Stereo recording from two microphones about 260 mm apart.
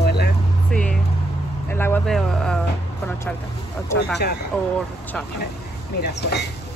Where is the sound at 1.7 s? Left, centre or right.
Centre.